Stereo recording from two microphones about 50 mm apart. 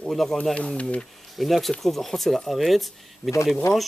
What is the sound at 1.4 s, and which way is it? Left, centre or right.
Speech, centre.